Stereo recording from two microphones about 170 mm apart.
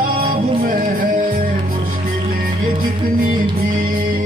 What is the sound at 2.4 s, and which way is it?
Music, 55° right (ahead or behind).